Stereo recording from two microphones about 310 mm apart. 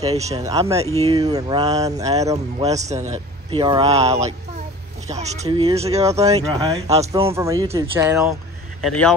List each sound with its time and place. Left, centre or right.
0.0 s speech: centre
8.8 s speech: centre